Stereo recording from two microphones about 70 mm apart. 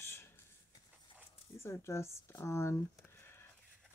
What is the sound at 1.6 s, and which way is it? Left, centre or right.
Speech, left.